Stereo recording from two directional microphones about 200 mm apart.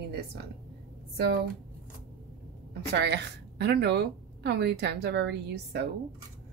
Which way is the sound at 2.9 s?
60° right (ahead or behind).